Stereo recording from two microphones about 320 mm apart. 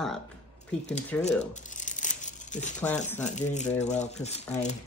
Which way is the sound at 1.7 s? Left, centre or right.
Left.